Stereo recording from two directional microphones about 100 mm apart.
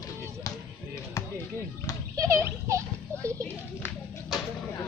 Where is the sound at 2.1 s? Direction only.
35° right (ahead or behind).